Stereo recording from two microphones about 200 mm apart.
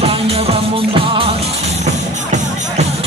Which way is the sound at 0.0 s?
30° right (ahead or behind).